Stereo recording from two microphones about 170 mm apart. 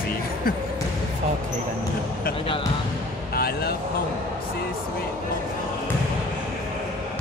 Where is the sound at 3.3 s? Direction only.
65° left (ahead or behind).